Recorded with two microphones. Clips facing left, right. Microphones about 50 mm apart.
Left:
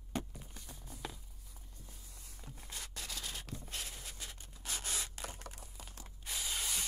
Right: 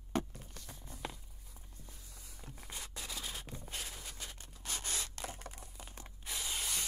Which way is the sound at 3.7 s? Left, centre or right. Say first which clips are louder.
Right 1 dB; centre.